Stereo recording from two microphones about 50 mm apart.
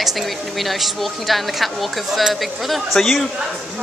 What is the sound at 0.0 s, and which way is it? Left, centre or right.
Speech, centre.